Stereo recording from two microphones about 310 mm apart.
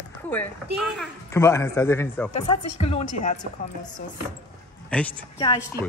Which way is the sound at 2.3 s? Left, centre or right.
Left.